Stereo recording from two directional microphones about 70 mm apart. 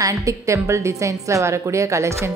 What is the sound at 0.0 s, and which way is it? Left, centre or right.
A woman's voice, right.